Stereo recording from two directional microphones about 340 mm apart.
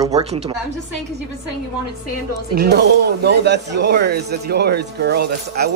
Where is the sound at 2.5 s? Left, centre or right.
Right.